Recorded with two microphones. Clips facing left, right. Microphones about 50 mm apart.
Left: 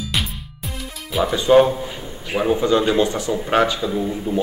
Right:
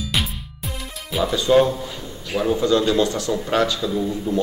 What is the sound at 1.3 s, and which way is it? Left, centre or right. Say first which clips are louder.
A man's voice: left 3 dB; left.